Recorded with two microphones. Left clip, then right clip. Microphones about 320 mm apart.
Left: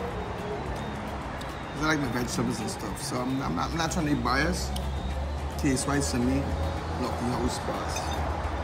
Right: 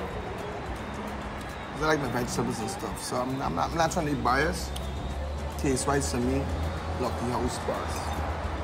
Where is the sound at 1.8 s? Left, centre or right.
Centre.